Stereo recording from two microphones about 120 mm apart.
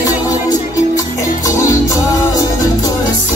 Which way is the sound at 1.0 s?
30° left (ahead or behind).